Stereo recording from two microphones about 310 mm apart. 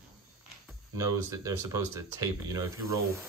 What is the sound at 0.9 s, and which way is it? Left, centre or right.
Speech, centre.